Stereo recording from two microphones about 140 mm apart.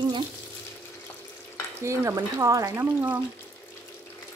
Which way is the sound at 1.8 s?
20° right (ahead or behind).